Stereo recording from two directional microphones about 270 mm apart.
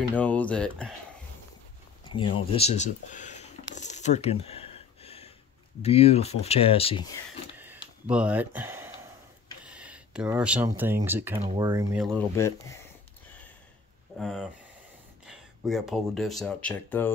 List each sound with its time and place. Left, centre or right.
0.1 s speech: centre
2.0 s a sound: centre
5.8 s speech: left
7.5 s a sound: centre
8.1 s speech: centre
12.0 s speech: centre
14.1 s speech: centre